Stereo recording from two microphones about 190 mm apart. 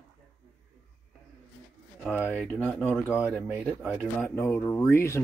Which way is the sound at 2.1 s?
5° right (ahead or behind).